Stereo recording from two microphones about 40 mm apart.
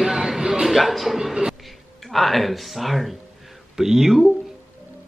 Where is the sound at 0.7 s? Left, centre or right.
Centre.